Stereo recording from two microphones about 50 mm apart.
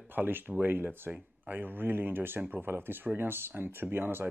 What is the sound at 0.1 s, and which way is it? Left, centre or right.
Speech, right.